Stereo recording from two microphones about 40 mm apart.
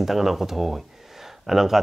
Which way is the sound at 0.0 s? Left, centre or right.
Centre.